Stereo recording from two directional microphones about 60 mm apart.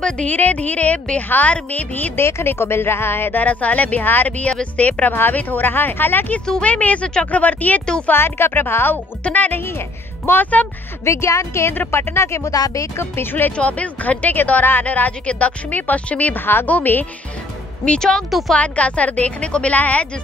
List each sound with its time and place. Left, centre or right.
0.3 s a woman's voice: left
2.1 s speech: left
4.5 s a woman's voice: left
8.1 s speech: left
11.1 s speech: left
12.5 s speech: left
13.6 s a woman's voice: left
17.8 s speech: centre
18.5 s a woman's voice: left